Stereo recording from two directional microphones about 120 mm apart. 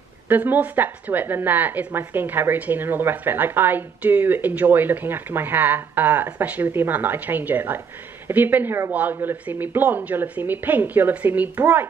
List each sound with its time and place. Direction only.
0.3 s a woman's voice: 15° right (ahead or behind)